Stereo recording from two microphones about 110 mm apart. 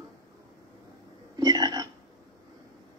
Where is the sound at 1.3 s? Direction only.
35° right (ahead or behind).